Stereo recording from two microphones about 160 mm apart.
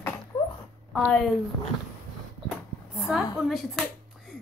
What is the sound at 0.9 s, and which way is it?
Speech, centre (ahead or behind).